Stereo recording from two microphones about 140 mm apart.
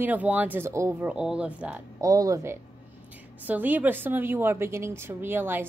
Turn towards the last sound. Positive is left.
turn(degrees=-15)  # may be behind; listen again after turning